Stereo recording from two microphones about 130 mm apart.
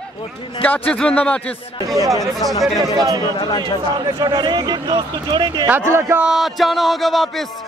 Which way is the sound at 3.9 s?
35° right (ahead or behind).